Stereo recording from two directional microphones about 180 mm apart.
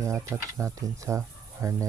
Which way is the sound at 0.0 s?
15° right (ahead or behind).